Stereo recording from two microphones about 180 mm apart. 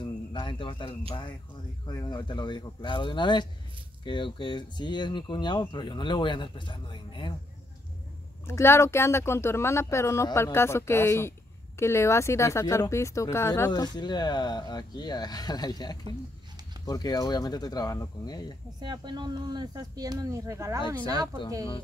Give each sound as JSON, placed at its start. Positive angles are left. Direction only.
{"t": 0.0, "sound": "bird", "side_deg": 25}
{"t": 1.9, "sound": "speech", "side_deg": 25}
{"t": 8.5, "sound": "speech", "side_deg": 15}
{"t": 18.8, "sound": "speech", "side_deg": -25}